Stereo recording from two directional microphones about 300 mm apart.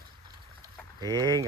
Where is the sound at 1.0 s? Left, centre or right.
Centre.